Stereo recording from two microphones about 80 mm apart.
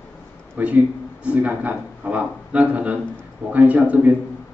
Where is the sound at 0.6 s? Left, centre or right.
Right.